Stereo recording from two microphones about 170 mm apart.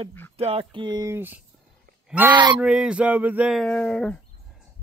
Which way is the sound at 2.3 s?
25° right (ahead or behind).